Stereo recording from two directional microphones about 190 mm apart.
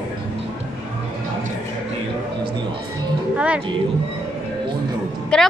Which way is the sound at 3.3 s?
5° right (ahead or behind).